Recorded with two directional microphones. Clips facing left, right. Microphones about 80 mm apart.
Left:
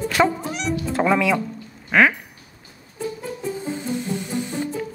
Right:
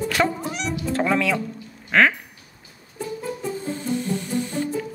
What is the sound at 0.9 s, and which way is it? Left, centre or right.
Speech, centre.